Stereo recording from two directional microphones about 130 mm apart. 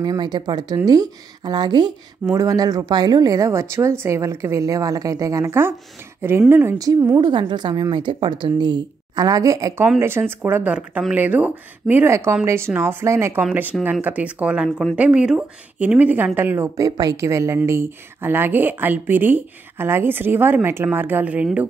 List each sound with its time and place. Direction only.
0.0 s a woman's voice: 30° right (ahead or behind)
7.2 s a woman's voice: 35° right (ahead or behind); by 21.5 s 10° right (ahead or behind)